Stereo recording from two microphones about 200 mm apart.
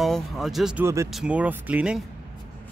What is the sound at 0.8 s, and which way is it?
Speech, 15° right (ahead or behind).